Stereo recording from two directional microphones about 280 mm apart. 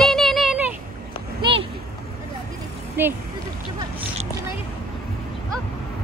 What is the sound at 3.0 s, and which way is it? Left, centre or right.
Speech, centre.